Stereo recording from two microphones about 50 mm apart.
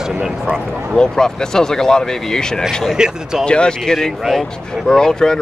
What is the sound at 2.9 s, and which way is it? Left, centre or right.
Speech, centre.